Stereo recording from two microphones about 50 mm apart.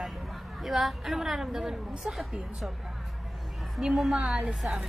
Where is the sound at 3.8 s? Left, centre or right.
Centre.